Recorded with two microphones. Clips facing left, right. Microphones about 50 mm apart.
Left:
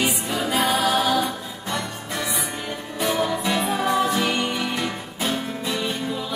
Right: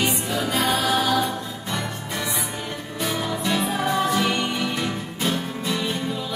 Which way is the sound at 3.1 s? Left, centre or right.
Centre.